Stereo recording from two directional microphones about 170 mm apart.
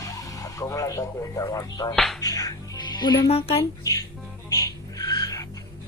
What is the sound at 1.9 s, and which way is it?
Music, centre (ahead or behind).